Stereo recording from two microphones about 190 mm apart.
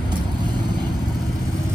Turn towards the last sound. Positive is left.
turn(degrees=-20)  # may be behind; listen again after turning